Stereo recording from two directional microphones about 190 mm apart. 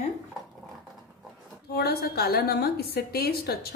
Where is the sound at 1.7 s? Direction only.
55° left (ahead or behind).